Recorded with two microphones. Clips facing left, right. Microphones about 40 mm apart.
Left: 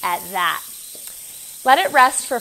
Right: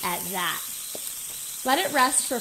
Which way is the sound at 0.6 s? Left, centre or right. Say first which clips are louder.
Right 3 dB; right.